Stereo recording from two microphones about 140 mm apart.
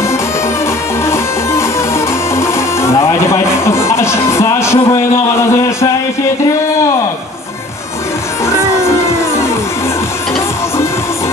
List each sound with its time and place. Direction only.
1.0 s music: 20° left (ahead or behind)
8.5 s music: 20° left (ahead or behind)